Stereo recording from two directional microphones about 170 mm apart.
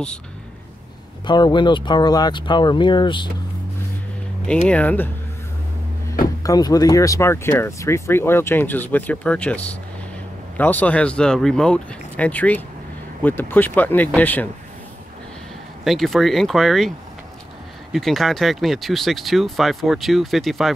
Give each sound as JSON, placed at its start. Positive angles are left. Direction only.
{"t": 1.2, "sound": "speech", "side_deg": 25}
{"t": 4.6, "sound": "speech", "side_deg": 10}
{"t": 6.4, "sound": "speech", "side_deg": 20}
{"t": 15.8, "sound": "speech", "side_deg": 0}
{"t": 17.9, "sound": "speech", "side_deg": 0}